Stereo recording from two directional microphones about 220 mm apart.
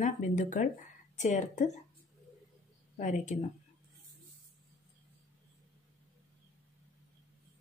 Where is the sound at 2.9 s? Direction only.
35° left (ahead or behind).